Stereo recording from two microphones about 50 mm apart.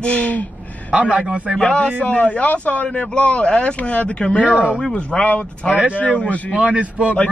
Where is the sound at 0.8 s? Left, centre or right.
Right.